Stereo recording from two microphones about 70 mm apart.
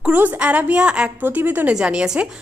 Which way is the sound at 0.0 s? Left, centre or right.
Right.